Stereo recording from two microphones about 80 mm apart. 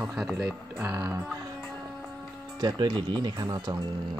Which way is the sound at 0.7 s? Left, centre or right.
Right.